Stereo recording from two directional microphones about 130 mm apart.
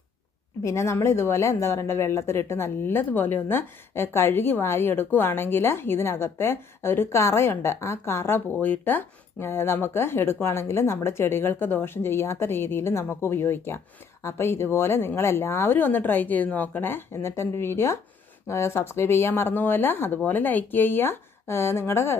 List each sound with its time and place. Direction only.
0.6 s a woman's voice: 20° left (ahead or behind)